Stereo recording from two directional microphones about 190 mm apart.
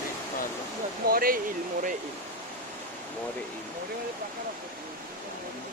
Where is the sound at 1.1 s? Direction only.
50° right (ahead or behind).